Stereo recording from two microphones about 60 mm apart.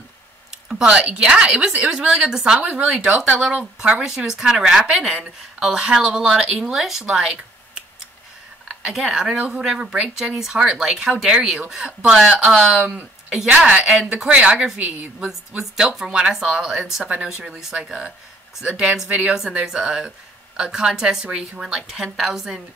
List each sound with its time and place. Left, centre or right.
0.5 s a woman's voice: centre
1.9 s a woman's voice: centre
8.6 s a woman's voice: centre
13.7 s a woman's voice: right
15.2 s a woman's voice: centre
17.0 s speech: right
17.6 s a woman's voice: centre